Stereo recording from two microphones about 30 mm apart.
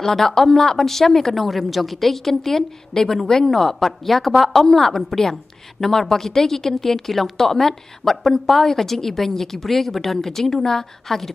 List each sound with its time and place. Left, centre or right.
0.0 s a woman's voice: centre